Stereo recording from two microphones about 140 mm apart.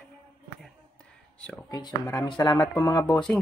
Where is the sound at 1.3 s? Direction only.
5° left (ahead or behind).